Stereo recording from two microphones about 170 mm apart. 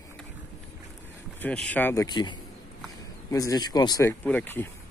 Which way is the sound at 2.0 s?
25° left (ahead or behind).